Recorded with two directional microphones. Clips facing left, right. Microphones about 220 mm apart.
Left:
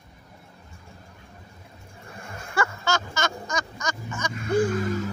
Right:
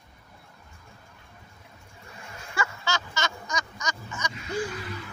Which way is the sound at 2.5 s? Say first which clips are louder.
Left 5 dB; 55° left (ahead or behind).